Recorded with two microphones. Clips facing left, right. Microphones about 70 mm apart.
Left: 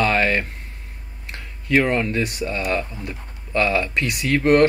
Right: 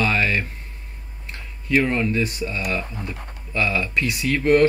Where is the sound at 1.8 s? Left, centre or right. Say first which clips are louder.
Left 1 dB; left.